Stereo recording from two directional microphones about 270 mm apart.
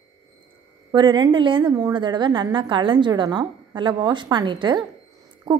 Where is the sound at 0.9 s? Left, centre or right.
Centre.